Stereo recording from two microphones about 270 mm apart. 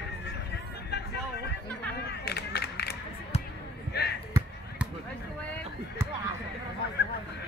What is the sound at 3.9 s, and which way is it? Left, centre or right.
Basketball bounce, left.